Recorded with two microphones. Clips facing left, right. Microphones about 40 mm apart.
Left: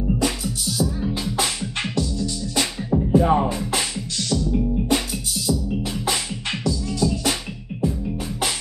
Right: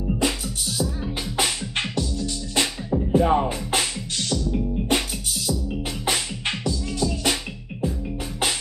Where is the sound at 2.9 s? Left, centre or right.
Left.